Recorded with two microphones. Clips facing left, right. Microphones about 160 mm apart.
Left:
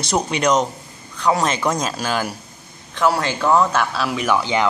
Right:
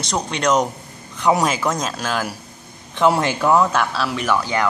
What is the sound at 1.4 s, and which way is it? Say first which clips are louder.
Speech: even; 5° right (ahead or behind).